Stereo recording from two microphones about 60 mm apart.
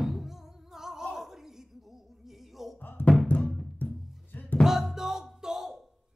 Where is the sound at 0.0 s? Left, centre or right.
Centre.